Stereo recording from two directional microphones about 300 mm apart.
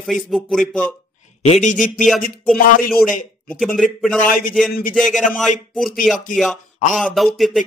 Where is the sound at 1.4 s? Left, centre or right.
Left.